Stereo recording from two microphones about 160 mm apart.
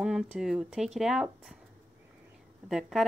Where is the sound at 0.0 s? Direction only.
5° right (ahead or behind).